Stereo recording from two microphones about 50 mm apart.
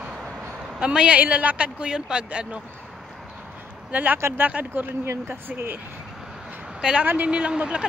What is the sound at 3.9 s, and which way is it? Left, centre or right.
Speech, right.